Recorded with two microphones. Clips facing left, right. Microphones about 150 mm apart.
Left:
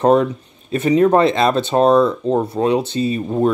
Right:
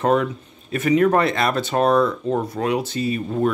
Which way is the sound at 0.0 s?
35° left (ahead or behind).